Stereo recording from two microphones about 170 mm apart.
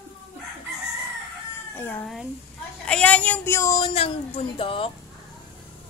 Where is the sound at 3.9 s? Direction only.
35° left (ahead or behind).